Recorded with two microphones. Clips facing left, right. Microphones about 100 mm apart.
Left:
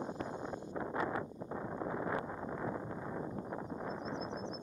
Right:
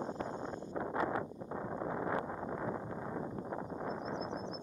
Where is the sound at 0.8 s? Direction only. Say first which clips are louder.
Right 2 dB; 40° right (ahead or behind).